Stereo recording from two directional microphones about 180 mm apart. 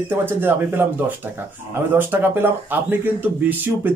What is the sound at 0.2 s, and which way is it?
Speech, 10° right (ahead or behind).